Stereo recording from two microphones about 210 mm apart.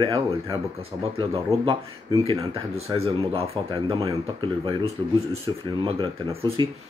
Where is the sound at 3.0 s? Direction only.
30° right (ahead or behind).